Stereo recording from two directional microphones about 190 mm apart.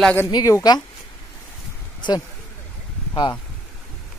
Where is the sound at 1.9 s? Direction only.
25° left (ahead or behind).